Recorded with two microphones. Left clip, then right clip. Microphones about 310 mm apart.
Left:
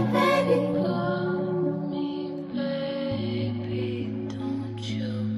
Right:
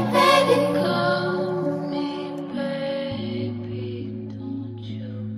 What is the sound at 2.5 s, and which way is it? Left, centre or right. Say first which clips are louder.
Music: right 3 dB; right.